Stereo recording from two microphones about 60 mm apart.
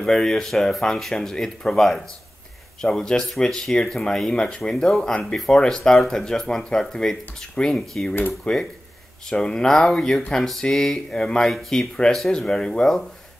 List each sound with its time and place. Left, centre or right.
0.0 s speech: centre